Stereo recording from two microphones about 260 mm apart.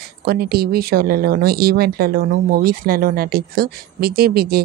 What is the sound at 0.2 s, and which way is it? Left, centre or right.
Speech, right.